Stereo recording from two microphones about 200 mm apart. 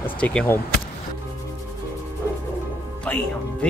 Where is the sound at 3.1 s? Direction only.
5° left (ahead or behind).